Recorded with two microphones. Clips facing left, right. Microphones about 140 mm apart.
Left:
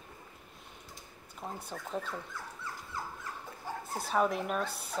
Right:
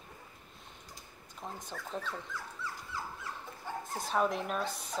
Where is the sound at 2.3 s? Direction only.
50° left (ahead or behind).